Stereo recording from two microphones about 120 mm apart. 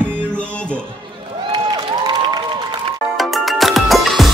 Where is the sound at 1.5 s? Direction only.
40° right (ahead or behind).